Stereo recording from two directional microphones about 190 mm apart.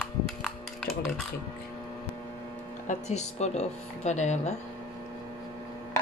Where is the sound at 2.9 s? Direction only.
35° left (ahead or behind).